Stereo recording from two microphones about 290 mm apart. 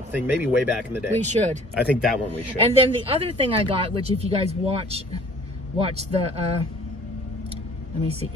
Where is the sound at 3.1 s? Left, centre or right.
Centre.